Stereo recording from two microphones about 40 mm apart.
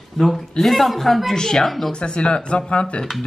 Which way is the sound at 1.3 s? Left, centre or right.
Centre.